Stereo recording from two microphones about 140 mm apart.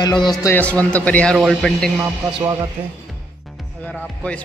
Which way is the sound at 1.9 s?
25° right (ahead or behind).